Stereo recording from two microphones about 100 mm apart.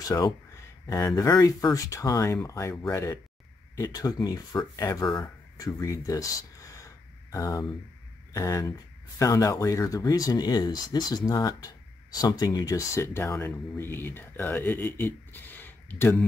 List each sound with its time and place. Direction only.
0.8 s speech: 35° left (ahead or behind)
5.2 s a sound: 35° left (ahead or behind)
8.3 s speech: 35° left (ahead or behind); by 16.2 s 20° left (ahead or behind)